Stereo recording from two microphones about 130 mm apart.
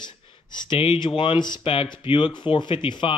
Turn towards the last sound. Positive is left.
turn(degrees=40)  # may be behind; listen again after turning